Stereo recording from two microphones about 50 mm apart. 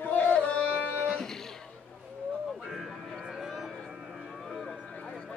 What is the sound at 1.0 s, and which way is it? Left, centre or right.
Music, centre.